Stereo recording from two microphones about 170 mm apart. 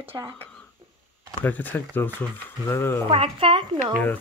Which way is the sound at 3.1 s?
30° right (ahead or behind).